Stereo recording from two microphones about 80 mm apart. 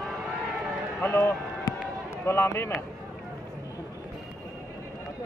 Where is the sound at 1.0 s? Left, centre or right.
Left.